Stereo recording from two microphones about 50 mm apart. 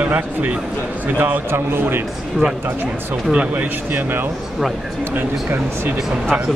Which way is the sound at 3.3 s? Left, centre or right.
Right.